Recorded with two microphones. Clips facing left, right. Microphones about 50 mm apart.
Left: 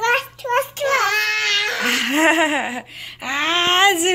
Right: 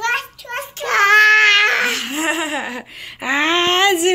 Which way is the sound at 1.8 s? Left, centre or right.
Left.